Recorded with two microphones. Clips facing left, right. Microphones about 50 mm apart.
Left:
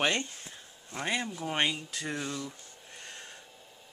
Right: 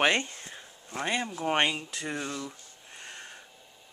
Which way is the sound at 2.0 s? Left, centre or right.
Centre.